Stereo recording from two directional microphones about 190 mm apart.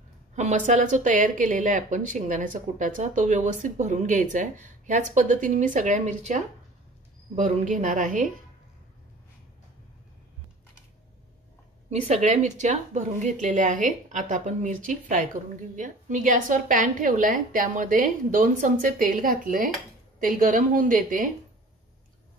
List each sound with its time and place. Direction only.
0.4 s speech: 40° right (ahead or behind)
11.9 s a woman's voice: 35° right (ahead or behind)